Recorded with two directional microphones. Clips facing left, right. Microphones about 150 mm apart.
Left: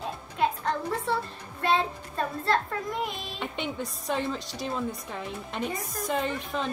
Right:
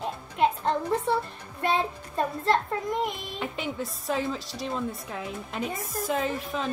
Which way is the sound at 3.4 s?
Centre (ahead or behind).